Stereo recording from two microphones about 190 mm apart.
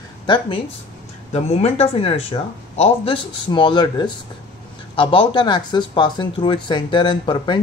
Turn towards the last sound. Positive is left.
turn(degrees=25)  # may be behind; listen again after turning